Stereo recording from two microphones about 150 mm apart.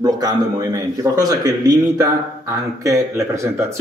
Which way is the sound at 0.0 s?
25° right (ahead or behind).